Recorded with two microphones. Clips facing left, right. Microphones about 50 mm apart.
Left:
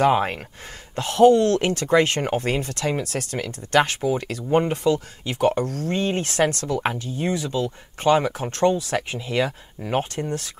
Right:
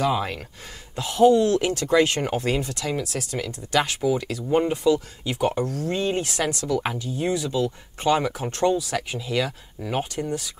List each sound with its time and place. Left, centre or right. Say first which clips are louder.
0.0 s speech: left 5 dB; left
0.9 s speech: left 2 dB; left
9.1 s speech: left 1 dB; left
10.2 s speech: even; centre